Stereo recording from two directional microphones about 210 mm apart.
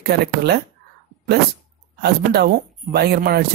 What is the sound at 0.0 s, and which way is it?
Speech, 50° right (ahead or behind).